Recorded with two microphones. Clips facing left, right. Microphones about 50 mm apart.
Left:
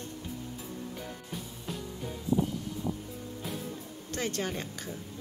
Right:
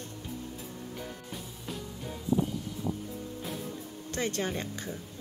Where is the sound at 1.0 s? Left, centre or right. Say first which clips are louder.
Even; centre.